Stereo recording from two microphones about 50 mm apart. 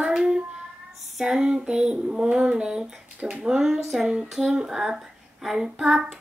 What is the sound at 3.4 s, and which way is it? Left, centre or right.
Speech, centre.